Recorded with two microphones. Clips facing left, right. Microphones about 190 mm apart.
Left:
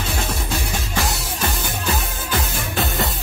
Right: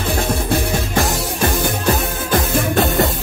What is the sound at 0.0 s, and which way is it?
Music, 60° right (ahead or behind).